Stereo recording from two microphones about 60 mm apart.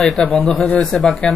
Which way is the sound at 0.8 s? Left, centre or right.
Centre.